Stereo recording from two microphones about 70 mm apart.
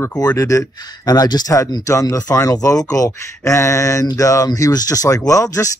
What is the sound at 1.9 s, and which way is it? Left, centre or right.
Speech, left.